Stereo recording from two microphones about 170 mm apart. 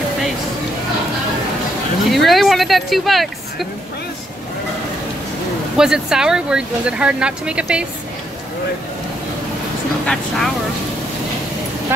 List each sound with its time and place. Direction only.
2.0 s speech: centre (ahead or behind)
5.8 s speech: 5° right (ahead or behind)
10.0 s speech: centre (ahead or behind)